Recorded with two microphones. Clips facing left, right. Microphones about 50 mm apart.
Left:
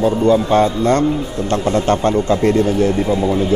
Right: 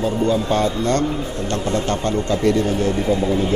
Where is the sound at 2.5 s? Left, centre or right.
Left.